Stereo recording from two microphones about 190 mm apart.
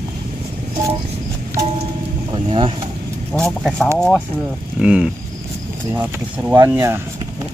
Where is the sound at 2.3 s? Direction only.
25° right (ahead or behind).